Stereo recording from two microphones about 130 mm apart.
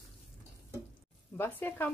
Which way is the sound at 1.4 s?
15° left (ahead or behind).